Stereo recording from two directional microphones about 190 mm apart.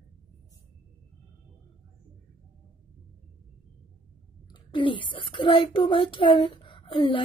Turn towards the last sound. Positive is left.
turn(degrees=25)  # may be behind; listen again after turning